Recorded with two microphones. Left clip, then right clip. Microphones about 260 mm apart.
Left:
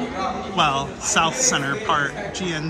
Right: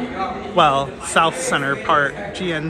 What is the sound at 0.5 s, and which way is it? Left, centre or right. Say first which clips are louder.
Speech: right 6 dB; centre.